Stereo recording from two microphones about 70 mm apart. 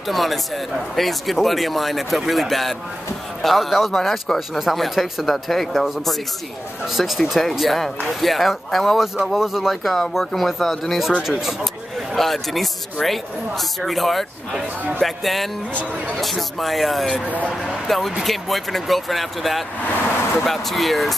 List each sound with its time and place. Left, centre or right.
0.1 s speech: centre
17.3 s speech: centre
17.8 s speech: centre